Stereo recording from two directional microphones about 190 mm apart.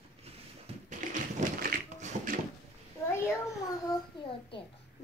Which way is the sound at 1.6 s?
45° right (ahead or behind).